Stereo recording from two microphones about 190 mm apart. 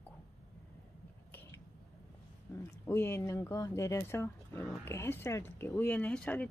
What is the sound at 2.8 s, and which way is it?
Speech, 15° left (ahead or behind).